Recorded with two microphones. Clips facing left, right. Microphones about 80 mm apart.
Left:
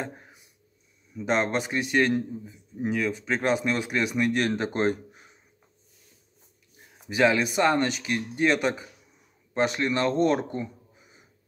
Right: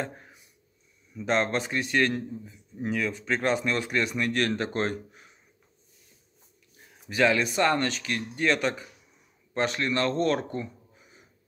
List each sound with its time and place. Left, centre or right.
0.0 s a sound: centre
1.1 s a man's voice: centre
7.1 s a man's voice: centre